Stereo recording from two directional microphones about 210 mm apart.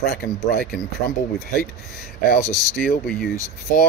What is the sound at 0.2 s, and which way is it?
Speech, 50° left (ahead or behind).